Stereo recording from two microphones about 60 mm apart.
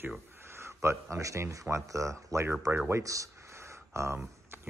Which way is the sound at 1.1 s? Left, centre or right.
Right.